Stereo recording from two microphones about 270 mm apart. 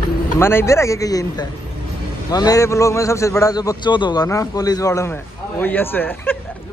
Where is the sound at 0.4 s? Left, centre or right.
Centre.